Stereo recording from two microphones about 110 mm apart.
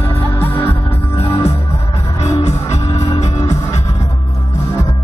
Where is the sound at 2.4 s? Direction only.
85° left.